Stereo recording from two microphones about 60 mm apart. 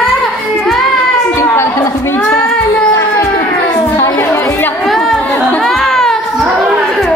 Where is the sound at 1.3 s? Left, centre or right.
Left.